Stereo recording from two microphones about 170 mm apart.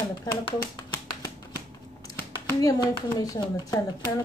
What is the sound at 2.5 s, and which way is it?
Speech, 20° left (ahead or behind).